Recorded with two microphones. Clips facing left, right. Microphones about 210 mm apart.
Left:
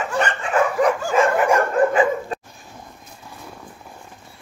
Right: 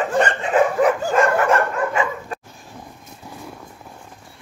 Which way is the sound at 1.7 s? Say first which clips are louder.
Left 5 dB; 35° left (ahead or behind).